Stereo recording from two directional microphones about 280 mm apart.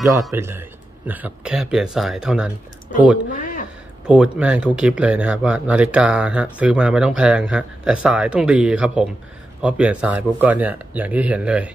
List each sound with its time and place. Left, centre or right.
0.2 s speech: centre
3.3 s a sound: left
4.1 s speech: centre